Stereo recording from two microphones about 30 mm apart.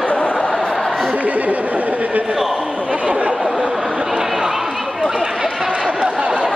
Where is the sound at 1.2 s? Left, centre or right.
Right.